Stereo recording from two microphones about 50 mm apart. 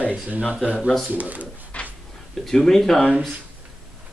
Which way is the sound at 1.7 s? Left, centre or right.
Left.